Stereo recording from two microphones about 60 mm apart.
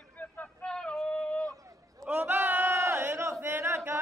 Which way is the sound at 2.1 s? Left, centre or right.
Right.